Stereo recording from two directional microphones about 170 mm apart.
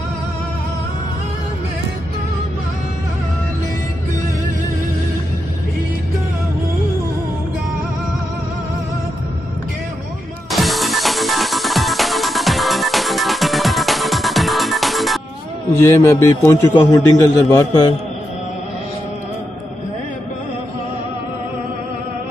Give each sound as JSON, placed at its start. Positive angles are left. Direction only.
{"t": 10.5, "sound": "music", "side_deg": 0}
{"t": 15.7, "sound": "a man's voice", "side_deg": 15}